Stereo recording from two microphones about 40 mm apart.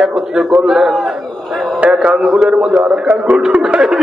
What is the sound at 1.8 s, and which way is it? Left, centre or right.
Speech, right.